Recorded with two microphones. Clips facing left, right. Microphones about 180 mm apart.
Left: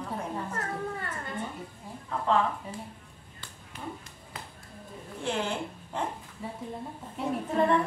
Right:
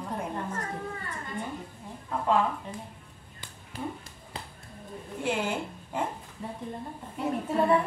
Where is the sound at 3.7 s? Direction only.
35° right (ahead or behind).